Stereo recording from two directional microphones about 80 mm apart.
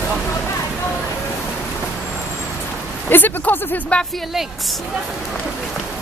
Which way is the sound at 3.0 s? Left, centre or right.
Left.